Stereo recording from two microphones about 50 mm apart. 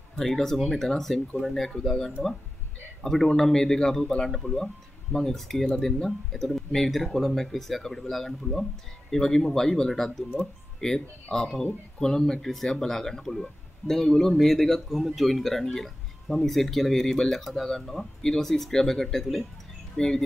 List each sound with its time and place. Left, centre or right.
0.2 s speech: centre
10.8 s speech: centre